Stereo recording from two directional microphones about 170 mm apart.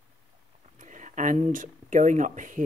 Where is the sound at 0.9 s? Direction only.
45° right (ahead or behind).